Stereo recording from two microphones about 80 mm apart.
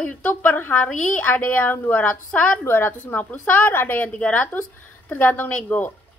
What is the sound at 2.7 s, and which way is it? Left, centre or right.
A woman's voice, left.